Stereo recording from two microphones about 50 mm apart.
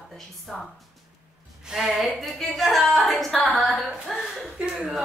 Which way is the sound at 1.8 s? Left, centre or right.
Centre.